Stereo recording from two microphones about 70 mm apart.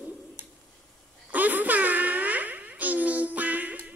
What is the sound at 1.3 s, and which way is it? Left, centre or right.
Music, right.